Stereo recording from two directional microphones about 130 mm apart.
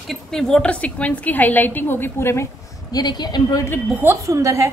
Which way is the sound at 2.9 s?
30° left (ahead or behind).